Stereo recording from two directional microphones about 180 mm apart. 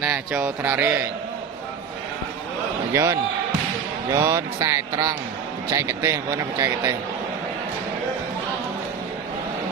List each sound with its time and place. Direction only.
0.0 s speech: 5° right (ahead or behind)
2.9 s speech: 15° right (ahead or behind)